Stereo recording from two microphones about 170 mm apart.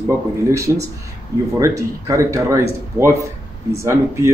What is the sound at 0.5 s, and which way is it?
Speech, 15° right (ahead or behind).